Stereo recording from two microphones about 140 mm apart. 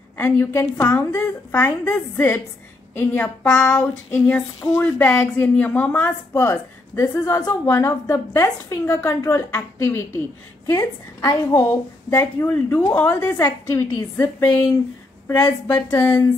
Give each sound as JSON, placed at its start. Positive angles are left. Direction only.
{"t": 0.2, "sound": "speech", "side_deg": 15}
{"t": 3.5, "sound": "a sound", "side_deg": 5}
{"t": 3.8, "sound": "speech", "side_deg": 15}
{"t": 15.7, "sound": "speech", "side_deg": 15}